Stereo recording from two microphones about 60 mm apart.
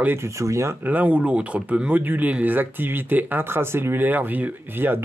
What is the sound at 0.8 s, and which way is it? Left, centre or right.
Speech, right.